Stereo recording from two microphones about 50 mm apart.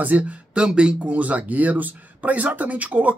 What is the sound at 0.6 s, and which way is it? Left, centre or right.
Speech, centre.